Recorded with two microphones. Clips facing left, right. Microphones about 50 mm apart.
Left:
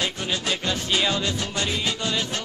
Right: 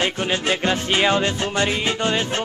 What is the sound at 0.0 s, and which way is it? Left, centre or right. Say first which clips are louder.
Music: right 5 dB; right.